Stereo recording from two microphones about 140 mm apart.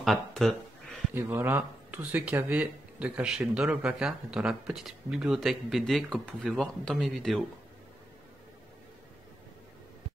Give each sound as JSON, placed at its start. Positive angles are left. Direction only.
{"t": 0.0, "sound": "speech", "side_deg": 0}
{"t": 1.1, "sound": "speech", "side_deg": -15}